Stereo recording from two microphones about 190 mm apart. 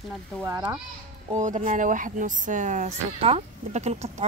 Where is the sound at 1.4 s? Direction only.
40° right (ahead or behind).